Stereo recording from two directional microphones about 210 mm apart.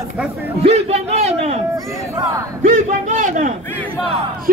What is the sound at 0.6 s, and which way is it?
Speech, 30° right (ahead or behind).